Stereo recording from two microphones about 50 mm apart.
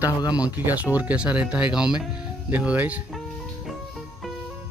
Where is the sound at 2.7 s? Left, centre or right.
Right.